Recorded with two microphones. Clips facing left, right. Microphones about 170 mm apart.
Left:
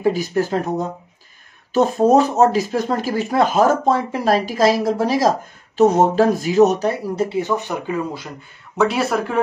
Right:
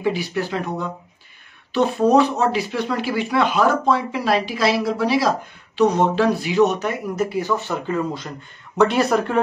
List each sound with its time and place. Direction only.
0.0 s speech: 40° left (ahead or behind); by 9.4 s 5° left (ahead or behind)